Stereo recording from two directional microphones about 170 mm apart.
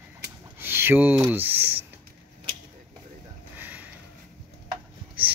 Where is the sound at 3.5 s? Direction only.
10° right (ahead or behind).